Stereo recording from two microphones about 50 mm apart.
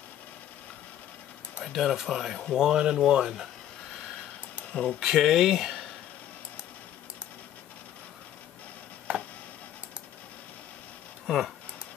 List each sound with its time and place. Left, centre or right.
1.6 s speech: centre
5.0 s speech: centre
9.1 s a sound: right
11.2 s speech: centre